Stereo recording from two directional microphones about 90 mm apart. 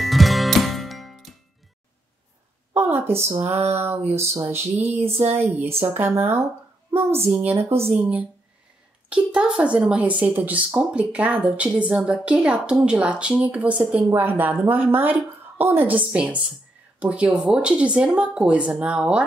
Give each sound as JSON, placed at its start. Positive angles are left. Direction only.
{"t": 0.0, "sound": "music", "side_deg": 0}
{"t": 2.7, "sound": "speech", "side_deg": -25}
{"t": 9.1, "sound": "speech", "side_deg": -10}